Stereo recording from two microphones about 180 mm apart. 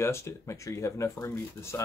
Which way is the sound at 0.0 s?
15° left (ahead or behind).